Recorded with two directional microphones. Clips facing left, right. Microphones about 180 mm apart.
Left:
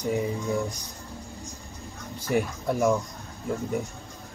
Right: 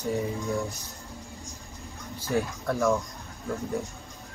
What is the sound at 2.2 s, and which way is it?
Speech, 15° left (ahead or behind).